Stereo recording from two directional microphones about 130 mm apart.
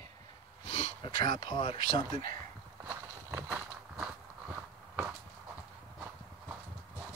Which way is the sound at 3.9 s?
15° right (ahead or behind).